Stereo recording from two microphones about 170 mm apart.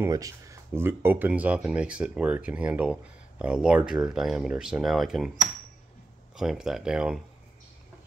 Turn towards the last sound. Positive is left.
turn(degrees=-5)  # may be behind; listen again after turning